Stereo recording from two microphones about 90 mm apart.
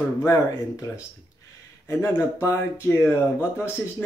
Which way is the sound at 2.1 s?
35° left (ahead or behind).